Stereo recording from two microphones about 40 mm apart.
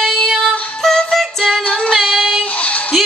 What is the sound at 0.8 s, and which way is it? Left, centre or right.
Music, centre.